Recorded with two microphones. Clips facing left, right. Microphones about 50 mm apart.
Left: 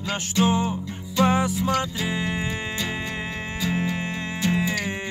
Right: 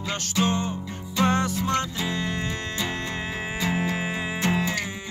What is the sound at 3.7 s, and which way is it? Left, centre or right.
Music, centre.